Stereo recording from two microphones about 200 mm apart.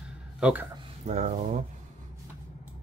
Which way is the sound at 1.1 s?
35° right (ahead or behind).